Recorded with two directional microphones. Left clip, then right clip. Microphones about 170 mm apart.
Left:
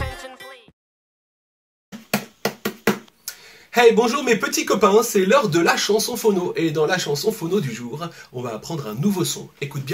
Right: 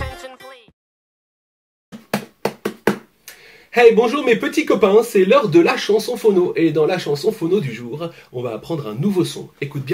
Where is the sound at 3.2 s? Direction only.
Centre (ahead or behind).